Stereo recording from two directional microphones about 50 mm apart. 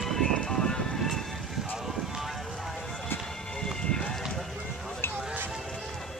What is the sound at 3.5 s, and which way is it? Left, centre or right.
Music, centre.